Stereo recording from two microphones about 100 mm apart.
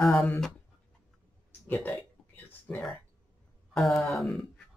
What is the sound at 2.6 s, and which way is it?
Speech, 5° left (ahead or behind).